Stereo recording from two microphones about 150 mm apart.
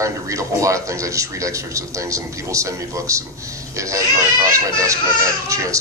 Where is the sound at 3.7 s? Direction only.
20° right (ahead or behind).